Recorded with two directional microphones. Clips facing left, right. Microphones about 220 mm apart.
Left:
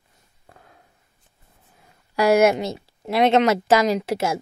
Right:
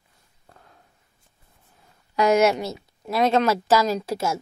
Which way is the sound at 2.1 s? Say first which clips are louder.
Left 2 dB; 10° left (ahead or behind).